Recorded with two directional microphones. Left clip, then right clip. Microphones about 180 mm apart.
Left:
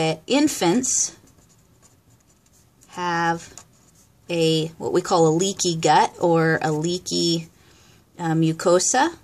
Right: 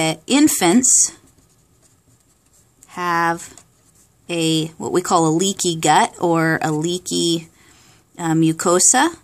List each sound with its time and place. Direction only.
0.0 s speech: 40° right (ahead or behind)
2.9 s speech: 35° right (ahead or behind)